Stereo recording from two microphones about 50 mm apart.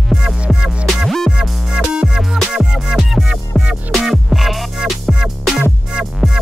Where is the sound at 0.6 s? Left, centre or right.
Centre.